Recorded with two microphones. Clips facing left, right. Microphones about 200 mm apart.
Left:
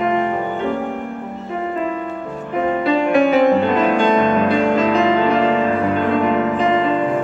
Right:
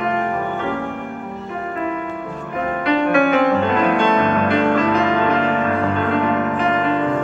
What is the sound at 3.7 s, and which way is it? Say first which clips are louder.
Music: left 1 dB; 15° left (ahead or behind).